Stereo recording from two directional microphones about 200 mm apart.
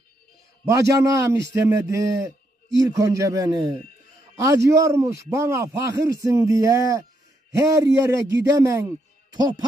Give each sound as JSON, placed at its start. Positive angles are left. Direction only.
{"t": 0.7, "sound": "a man's voice", "side_deg": -15}